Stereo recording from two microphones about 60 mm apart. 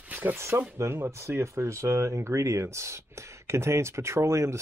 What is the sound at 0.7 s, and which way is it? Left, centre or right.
Speech, right.